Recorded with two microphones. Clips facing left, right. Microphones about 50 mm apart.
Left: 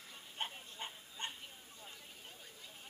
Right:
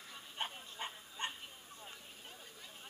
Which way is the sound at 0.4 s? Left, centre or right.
Right.